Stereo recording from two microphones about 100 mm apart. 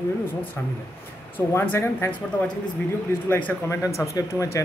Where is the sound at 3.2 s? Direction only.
15° left (ahead or behind).